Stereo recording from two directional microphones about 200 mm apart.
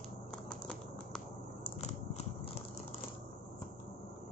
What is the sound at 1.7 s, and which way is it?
Biting, 35° left (ahead or behind).